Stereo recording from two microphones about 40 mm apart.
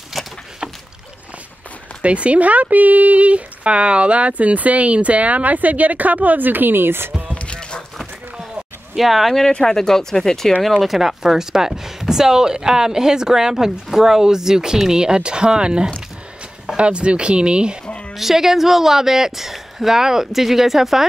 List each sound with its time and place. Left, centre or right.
0.2 s a sound: centre
2.0 s speech: right
7.3 s music: left
8.9 s speech: centre
9.5 s speech: centre
10.8 s speech: centre; by 17.7 s right
18.1 s speech: centre